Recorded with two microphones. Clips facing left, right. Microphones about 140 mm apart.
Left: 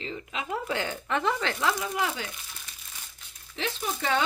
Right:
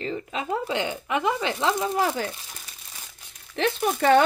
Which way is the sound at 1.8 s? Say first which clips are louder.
Right 6 dB; 40° right (ahead or behind).